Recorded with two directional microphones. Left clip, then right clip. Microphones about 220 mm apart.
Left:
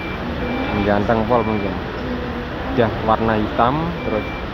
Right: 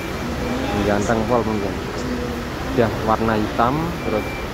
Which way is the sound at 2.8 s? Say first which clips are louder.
Left 1 dB; 5° right (ahead or behind).